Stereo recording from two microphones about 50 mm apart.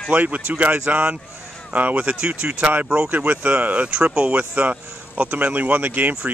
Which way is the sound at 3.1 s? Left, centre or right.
Right.